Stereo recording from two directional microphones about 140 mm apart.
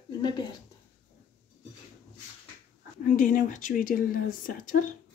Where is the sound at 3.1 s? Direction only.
65° left (ahead or behind).